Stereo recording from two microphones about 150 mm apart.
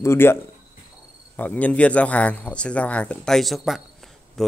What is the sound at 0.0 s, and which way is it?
Speech, 15° left (ahead or behind).